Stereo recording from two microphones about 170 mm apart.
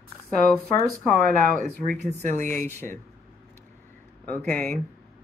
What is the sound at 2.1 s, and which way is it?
Speech, 45° right (ahead or behind).